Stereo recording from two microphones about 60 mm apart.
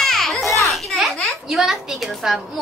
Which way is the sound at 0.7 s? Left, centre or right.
Centre.